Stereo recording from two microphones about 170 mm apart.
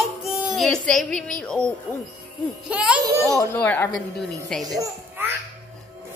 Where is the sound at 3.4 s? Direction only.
10° left (ahead or behind).